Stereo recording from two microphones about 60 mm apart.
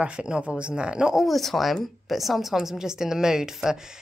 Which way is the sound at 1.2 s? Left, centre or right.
Centre.